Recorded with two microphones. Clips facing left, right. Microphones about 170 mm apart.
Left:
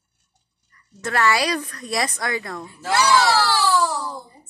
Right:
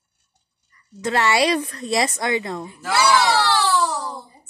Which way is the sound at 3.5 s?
10° left (ahead or behind).